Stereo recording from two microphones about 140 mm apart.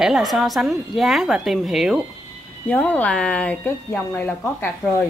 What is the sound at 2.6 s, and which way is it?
Speech, 10° left (ahead or behind).